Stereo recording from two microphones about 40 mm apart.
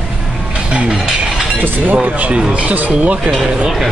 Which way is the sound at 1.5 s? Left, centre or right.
Right.